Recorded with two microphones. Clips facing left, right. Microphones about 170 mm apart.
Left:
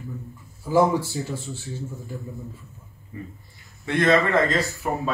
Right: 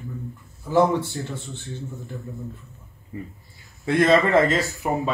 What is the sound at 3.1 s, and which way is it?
Speech, 25° right (ahead or behind).